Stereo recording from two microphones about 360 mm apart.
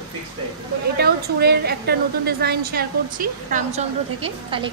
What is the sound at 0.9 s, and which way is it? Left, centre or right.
A woman's voice, right.